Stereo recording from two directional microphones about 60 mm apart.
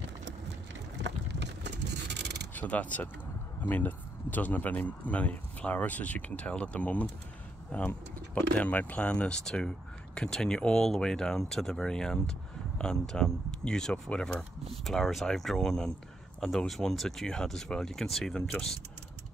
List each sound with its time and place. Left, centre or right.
2.5 s speech: left; by 18.8 s centre